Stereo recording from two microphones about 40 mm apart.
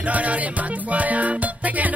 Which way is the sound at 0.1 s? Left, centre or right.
Right.